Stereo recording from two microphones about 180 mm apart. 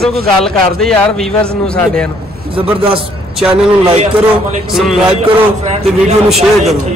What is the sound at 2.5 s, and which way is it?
Speech, 30° right (ahead or behind).